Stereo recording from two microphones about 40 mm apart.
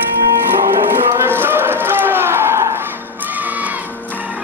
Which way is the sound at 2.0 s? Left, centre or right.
Right.